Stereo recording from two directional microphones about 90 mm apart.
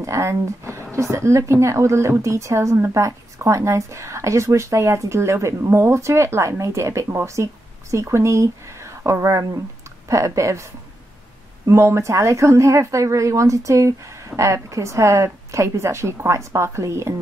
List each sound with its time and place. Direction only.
0.0 s a woman's voice: 35° right (ahead or behind)
11.7 s a woman's voice: 30° right (ahead or behind)